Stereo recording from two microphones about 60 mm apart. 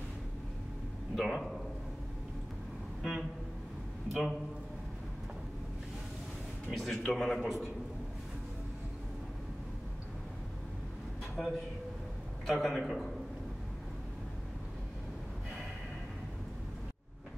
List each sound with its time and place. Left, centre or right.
1.1 s a man's voice: centre
3.0 s vehicle: centre
4.1 s a man's voice: centre
6.7 s a man's voice: centre
11.4 s a man's voice: centre